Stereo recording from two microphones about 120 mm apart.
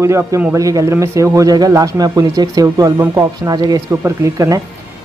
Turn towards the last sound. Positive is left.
turn(degrees=-30)  # may be behind; listen again after turning